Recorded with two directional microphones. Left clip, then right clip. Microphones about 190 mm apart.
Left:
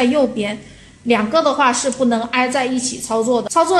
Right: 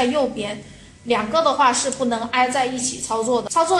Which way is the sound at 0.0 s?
30° left (ahead or behind).